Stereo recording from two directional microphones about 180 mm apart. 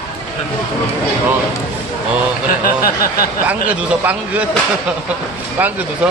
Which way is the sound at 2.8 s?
55° left (ahead or behind).